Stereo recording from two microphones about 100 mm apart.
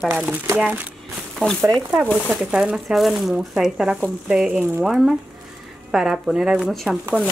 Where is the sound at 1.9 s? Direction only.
10° right (ahead or behind).